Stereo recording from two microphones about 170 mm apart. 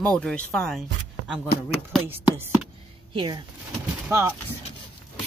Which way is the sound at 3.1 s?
30° right (ahead or behind).